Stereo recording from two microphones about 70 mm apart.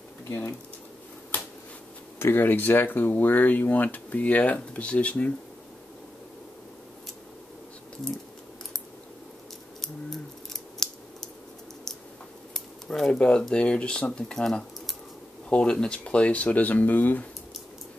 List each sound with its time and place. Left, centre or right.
0.3 s speech: left
2.1 s speech: left
9.8 s scissors: centre
12.5 s speech: centre; by 17.3 s left